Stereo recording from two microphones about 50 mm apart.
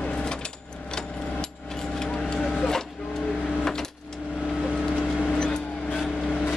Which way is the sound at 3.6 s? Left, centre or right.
Centre.